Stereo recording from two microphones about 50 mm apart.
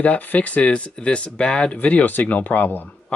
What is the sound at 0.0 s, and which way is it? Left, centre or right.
Speech, left.